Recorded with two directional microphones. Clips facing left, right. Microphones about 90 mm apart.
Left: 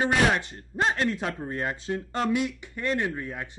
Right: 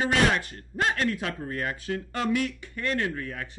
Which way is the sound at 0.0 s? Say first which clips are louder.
Left 1 dB; 25° left (ahead or behind).